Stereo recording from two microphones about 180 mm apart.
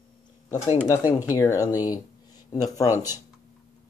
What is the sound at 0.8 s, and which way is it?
Speech, 15° left (ahead or behind).